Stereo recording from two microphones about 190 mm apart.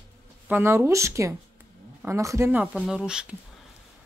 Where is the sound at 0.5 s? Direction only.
15° right (ahead or behind).